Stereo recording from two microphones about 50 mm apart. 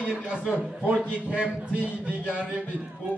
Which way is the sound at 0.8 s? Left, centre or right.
Right.